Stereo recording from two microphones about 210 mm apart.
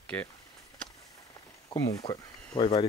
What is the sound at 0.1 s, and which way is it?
Speech, 5° left (ahead or behind).